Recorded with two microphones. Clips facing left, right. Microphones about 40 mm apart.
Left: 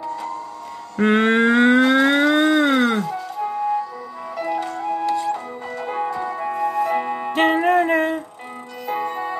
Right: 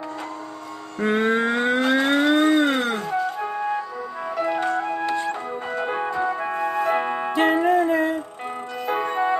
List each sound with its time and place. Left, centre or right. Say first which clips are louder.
0.9 s mantra: left 4 dB; left
2.1 s a sound: left 1 dB; left
3.0 s music: even; centre
7.5 s music: left 2 dB; left
8.8 s music: right 2 dB; right